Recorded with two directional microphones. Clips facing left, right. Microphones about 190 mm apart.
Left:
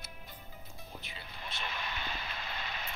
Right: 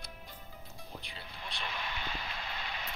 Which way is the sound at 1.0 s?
5° left (ahead or behind).